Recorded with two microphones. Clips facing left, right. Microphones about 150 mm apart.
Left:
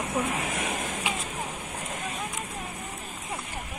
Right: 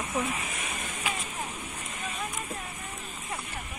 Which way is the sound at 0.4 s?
60° left (ahead or behind).